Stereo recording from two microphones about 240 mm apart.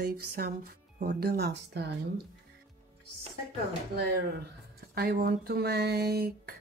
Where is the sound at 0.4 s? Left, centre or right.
Right.